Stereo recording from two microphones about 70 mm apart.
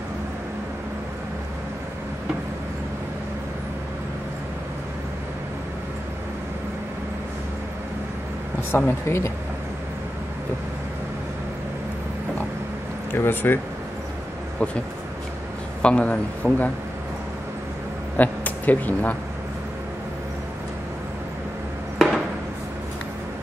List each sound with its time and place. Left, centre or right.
8.7 s speech: left
13.1 s a man's voice: left
15.8 s a man's voice: centre
18.1 s speech: left
21.9 s a sound: centre